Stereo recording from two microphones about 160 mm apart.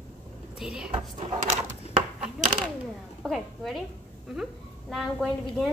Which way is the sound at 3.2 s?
Centre (ahead or behind).